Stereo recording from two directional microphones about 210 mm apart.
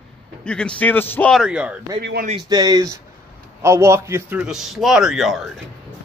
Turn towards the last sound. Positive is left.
turn(degrees=0)  # may be behind; listen again after turning